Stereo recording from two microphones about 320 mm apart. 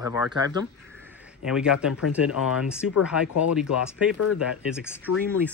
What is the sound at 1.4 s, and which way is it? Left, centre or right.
Speech, centre.